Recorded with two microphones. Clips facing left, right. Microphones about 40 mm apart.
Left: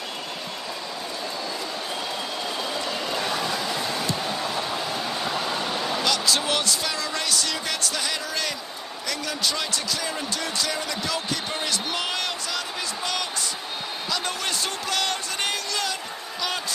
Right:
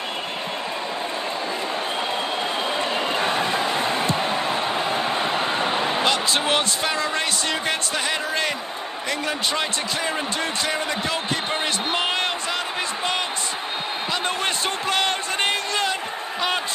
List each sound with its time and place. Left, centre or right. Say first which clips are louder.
2.8 s a sound: right 5 dB; right
10.6 s speech: right 4 dB; right
14.2 s basketball bounce: right 4 dB; right